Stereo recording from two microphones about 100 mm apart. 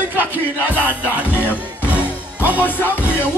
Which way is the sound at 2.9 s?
15° right (ahead or behind).